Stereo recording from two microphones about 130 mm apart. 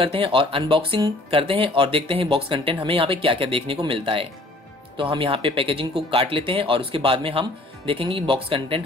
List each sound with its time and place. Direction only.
0.0 s speech: 45° right (ahead or behind)